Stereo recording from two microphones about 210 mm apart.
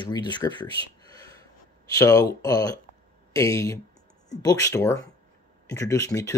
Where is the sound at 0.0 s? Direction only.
20° left (ahead or behind).